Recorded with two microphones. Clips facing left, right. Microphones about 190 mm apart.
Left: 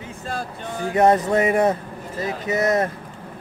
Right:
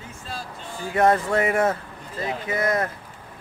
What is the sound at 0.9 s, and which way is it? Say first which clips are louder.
Speech: left 3 dB; 20° left (ahead or behind).